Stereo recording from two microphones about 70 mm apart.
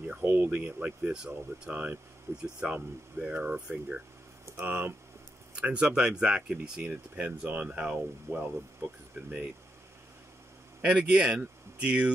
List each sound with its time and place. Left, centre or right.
0.2 s speech: right
0.7 s speech: centre
5.6 s speech: centre
10.8 s speech: centre